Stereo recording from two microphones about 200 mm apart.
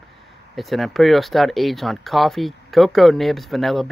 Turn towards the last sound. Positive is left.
turn(degrees=0)  # may be behind; listen again after turning